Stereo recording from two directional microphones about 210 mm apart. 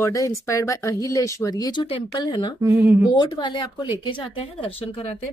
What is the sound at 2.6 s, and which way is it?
Speech, 10° right (ahead or behind).